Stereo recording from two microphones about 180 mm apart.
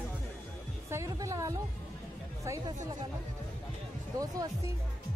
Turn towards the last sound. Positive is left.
turn(degrees=-20)  # may be behind; listen again after turning